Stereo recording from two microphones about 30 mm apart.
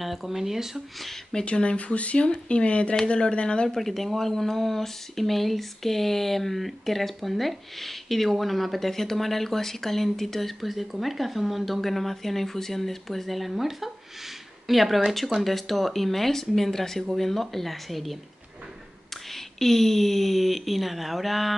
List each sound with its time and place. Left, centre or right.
0.0 s speech: centre
1.4 s speech: left
2.0 s speech: left
2.2 s speech: left
3.7 s speech: centre
19.3 s speech: centre